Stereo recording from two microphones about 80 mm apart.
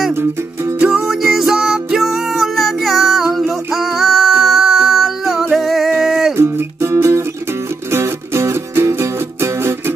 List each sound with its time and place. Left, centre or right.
0.8 s music: centre
6.3 s music: right